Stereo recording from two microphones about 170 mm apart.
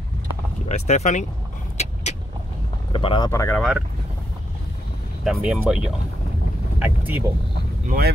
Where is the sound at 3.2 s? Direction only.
15° left (ahead or behind).